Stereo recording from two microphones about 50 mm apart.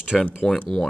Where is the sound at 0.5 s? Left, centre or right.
Centre.